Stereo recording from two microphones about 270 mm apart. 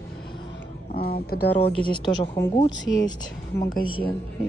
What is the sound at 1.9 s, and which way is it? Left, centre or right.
Speech, centre.